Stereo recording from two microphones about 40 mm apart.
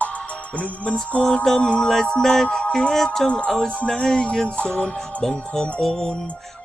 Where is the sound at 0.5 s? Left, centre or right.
Left.